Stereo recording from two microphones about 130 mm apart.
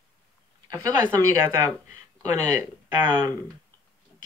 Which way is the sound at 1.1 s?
20° right (ahead or behind).